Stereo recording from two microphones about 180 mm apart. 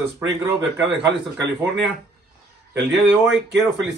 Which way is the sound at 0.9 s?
70° right (ahead or behind).